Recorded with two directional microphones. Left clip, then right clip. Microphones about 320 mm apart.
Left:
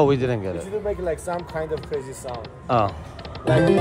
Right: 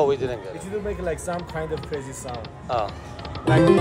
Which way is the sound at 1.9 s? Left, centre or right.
Centre.